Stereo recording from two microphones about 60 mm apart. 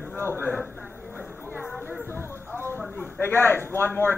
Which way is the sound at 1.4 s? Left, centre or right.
Right.